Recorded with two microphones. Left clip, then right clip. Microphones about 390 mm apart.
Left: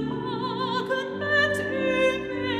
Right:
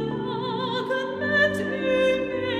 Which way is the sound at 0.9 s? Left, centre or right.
Left.